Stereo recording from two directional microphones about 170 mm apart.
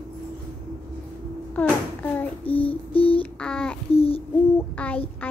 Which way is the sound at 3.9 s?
35° left (ahead or behind).